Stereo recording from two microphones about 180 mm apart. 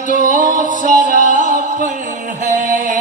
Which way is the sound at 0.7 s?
45° left (ahead or behind).